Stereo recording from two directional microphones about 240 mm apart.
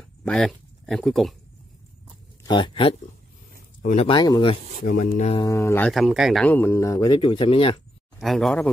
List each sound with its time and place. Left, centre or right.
0.2 s speech: centre
2.4 s speech: centre
5.4 s speech: centre
8.2 s a man's voice: centre